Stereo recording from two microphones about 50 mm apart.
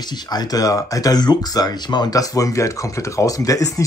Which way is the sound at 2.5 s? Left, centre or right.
Left.